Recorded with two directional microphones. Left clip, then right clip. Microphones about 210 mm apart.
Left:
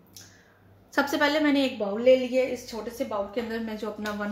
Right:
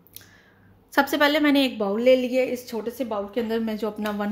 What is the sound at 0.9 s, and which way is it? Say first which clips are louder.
A woman's voice: right 4 dB; 40° right (ahead or behind).